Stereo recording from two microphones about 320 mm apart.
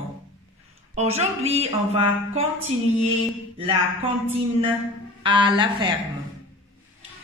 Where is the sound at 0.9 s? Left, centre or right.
Centre.